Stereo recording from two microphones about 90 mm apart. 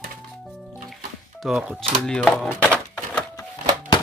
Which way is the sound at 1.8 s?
10° left (ahead or behind).